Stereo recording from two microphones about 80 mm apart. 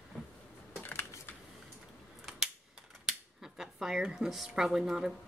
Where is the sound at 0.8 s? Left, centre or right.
Left.